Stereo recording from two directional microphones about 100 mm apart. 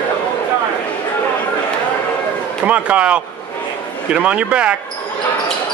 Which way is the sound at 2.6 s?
10° right (ahead or behind).